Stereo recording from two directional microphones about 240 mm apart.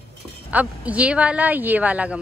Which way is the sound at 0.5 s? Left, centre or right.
Centre.